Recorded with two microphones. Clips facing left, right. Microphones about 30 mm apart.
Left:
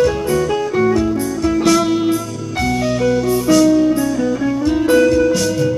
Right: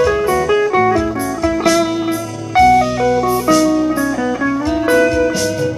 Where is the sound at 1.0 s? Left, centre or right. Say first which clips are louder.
Even; centre.